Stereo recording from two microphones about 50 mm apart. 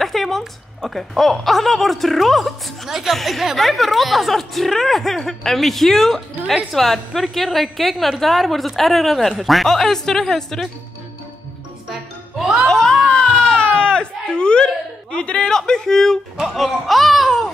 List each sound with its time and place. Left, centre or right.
0.0 s a sound: centre
0.4 s speech: centre
11.9 s music: centre
12.6 s a sound: centre
13.7 s crowd: centre
15.0 s a man's voice: centre
16.3 s speech: centre